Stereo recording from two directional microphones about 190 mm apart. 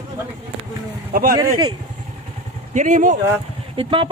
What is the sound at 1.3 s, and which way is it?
Speech, 20° right (ahead or behind).